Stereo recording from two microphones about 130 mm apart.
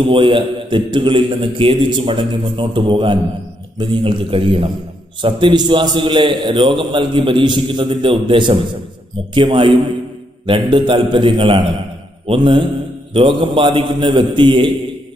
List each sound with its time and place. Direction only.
0.0 s a man's voice: 40° right (ahead or behind)